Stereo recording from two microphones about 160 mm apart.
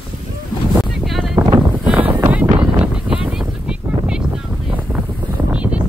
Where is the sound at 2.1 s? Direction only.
10° right (ahead or behind).